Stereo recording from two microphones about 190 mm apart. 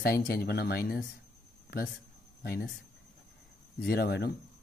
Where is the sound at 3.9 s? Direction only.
60° left (ahead or behind).